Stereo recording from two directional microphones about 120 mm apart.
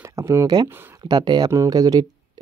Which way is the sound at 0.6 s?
20° right (ahead or behind).